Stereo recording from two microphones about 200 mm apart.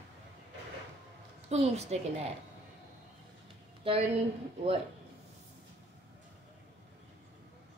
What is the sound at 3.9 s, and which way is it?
Speech, 30° right (ahead or behind).